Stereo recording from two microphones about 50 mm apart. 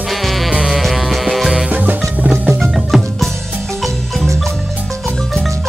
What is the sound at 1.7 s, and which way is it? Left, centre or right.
Music, right.